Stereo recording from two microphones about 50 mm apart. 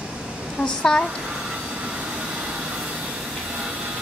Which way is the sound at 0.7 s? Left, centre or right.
Centre.